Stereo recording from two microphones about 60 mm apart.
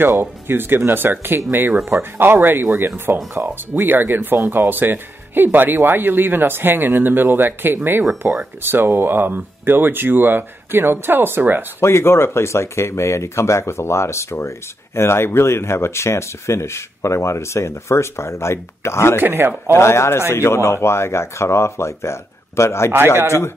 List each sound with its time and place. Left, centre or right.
0.2 s speech: right
11.8 s speech: left
19.1 s speech: right
19.7 s speech: left